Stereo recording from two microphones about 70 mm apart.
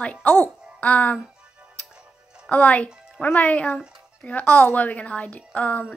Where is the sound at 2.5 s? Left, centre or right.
Left.